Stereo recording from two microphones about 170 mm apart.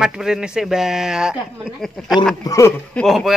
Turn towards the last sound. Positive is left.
turn(degrees=0)  # may be behind; listen again after turning